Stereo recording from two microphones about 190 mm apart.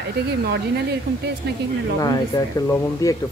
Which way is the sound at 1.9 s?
20° left (ahead or behind).